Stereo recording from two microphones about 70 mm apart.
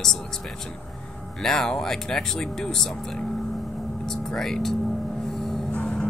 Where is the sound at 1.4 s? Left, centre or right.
Centre.